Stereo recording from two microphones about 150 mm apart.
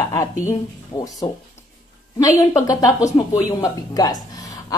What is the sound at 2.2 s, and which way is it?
A woman's voice, 25° left (ahead or behind).